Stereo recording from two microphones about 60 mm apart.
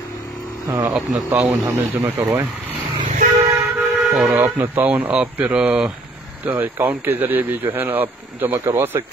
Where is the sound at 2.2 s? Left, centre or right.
Right.